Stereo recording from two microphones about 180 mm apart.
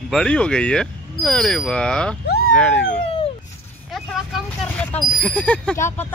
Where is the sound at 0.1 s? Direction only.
5° left (ahead or behind).